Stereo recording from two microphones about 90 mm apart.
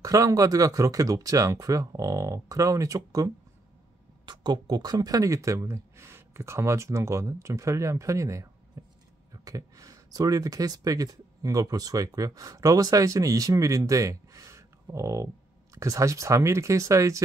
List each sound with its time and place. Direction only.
0.0 s speech: 40° right (ahead or behind)
4.3 s speech: 55° right (ahead or behind); by 17.2 s 35° right (ahead or behind)